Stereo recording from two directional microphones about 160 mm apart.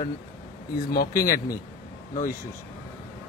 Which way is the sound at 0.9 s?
70° left (ahead or behind).